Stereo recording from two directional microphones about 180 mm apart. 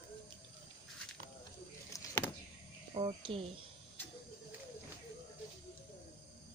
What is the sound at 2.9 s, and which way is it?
Speech, 30° right (ahead or behind).